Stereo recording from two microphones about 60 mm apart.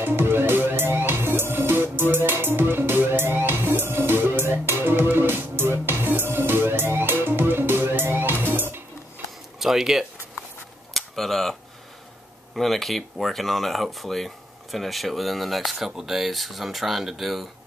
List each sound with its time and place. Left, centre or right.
0.0 s music: right
9.6 s a sound: centre
12.5 s speech: centre